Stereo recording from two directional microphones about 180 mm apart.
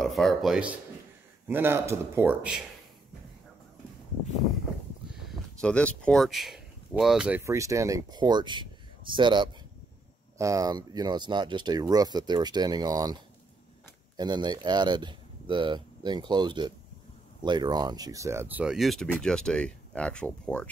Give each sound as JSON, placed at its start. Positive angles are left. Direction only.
{"t": 0.0, "sound": "speech", "side_deg": 0}
{"t": 5.1, "sound": "speech", "side_deg": 0}